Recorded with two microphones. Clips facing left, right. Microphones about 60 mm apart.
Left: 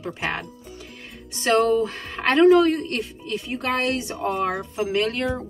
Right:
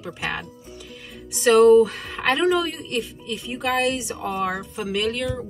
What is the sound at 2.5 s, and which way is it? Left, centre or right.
A man's voice, left.